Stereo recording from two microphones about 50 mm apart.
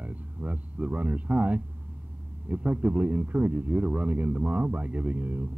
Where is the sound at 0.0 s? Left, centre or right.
Right.